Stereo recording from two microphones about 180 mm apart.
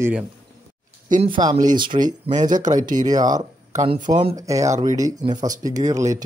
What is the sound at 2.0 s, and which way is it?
Speech, 45° right (ahead or behind).